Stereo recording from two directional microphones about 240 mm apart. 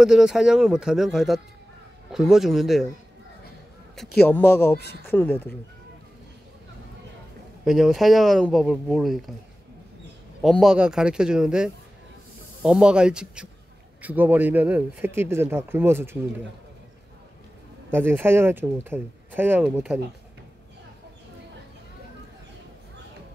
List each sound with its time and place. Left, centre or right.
0.0 s speech: centre
4.3 s speech: centre
4.7 s speech: left
5.1 s speech: centre
7.6 s speech: centre
10.4 s speech: centre
17.9 s speech: centre